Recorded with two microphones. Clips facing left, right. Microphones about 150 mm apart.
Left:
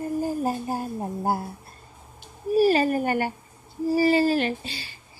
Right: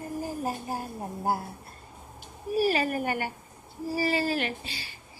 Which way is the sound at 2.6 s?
35° left (ahead or behind).